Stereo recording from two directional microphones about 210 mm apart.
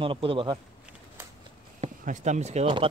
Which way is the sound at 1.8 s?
35° right (ahead or behind).